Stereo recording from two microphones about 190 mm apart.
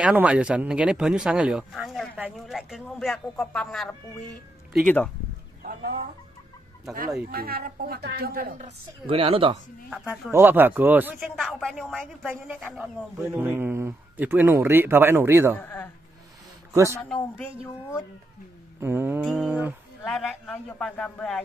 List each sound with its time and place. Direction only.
0.0 s speech: 5° right (ahead or behind)
5.6 s chicken: 50° right (ahead or behind)
7.2 s a woman's voice: 50° right (ahead or behind); by 9.6 s 30° right (ahead or behind)
10.3 s speech: 10° right (ahead or behind)
11.3 s speech: centre (ahead or behind)
12.3 s speech: 10° right (ahead or behind)
15.5 s speech: 10° left (ahead or behind)
16.7 s speech: 15° right (ahead or behind)
17.0 s speech: 5° left (ahead or behind)
18.8 s speech: 10° right (ahead or behind); by 21.4 s 5° left (ahead or behind)